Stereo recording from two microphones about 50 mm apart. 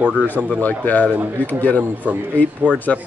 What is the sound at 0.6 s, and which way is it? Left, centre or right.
Speech, left.